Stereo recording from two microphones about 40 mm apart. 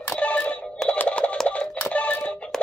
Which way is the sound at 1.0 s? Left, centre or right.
Left.